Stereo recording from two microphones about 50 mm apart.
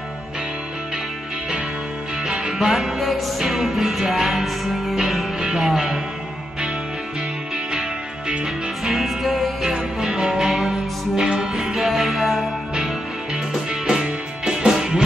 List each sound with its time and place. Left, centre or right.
2.2 s music: centre
8.8 s music: centre